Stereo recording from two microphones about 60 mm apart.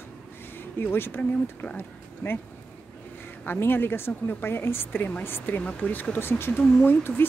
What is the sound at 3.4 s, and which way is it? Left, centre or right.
Speech, left.